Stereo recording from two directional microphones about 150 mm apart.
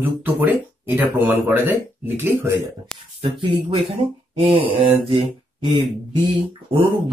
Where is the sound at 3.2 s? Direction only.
35° right (ahead or behind).